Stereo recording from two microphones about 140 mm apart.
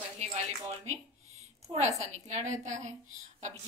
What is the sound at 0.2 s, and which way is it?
A woman's voice, 50° right (ahead or behind).